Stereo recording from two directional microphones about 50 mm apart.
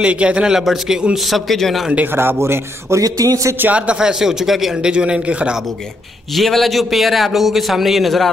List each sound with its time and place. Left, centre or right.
0.0 s a man's voice: right
0.6 s a man's voice: centre
2.0 s a man's voice: right
3.7 s a man's voice: right
6.3 s a man's voice: centre